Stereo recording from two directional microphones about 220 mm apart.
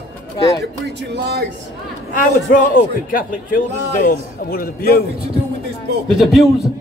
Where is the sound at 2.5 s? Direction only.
40° left (ahead or behind).